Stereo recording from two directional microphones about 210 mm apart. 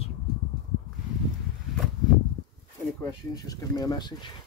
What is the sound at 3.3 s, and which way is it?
Speech, 15° left (ahead or behind).